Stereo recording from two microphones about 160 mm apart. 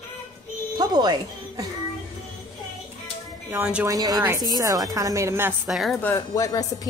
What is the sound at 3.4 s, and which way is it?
Speech, 10° right (ahead or behind).